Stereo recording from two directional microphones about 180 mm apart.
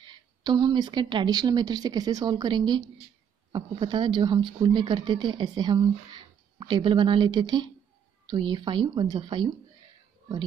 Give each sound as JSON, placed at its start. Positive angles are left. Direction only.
{"t": 0.0, "sound": "speech", "side_deg": -25}